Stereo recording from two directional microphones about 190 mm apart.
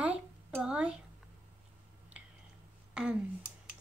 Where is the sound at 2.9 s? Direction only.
5° right (ahead or behind).